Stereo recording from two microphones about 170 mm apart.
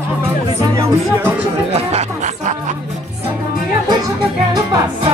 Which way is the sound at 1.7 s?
40° right (ahead or behind).